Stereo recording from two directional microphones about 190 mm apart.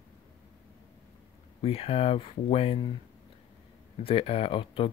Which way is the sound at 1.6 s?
30° left (ahead or behind).